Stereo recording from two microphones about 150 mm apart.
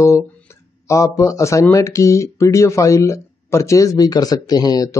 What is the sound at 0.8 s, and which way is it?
Speech, 20° left (ahead or behind).